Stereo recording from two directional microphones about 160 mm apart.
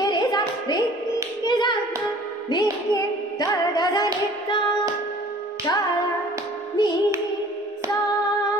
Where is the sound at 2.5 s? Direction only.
25° left (ahead or behind).